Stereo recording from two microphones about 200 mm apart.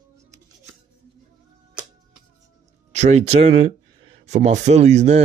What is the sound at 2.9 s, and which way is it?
Speech, 35° right (ahead or behind).